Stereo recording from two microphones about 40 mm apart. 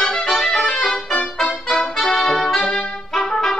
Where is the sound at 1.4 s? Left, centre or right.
Left.